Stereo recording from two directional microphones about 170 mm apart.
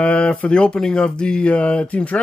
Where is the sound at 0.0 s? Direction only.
5° left (ahead or behind).